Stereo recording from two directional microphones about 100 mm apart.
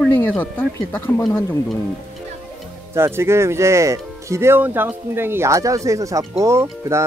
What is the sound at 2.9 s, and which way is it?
Speech, 25° right (ahead or behind).